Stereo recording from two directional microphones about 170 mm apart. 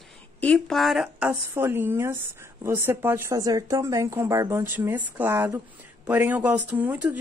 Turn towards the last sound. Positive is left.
turn(degrees=-10)  # may be behind; listen again after turning